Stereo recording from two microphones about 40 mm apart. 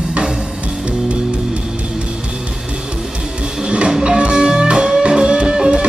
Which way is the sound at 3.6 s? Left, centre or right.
Right.